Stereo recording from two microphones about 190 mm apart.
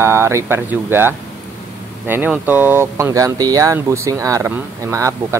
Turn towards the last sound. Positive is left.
turn(degrees=-15)  # may be behind; listen again after turning